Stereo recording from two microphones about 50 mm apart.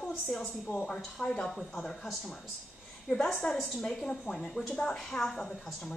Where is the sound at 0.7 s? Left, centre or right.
Centre.